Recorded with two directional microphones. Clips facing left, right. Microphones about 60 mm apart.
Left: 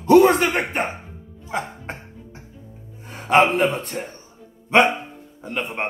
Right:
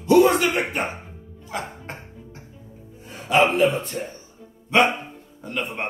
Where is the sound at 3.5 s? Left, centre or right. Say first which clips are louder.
Right 1 dB; left.